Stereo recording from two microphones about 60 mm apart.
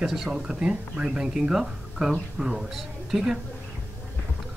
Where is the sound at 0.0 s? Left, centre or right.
Centre.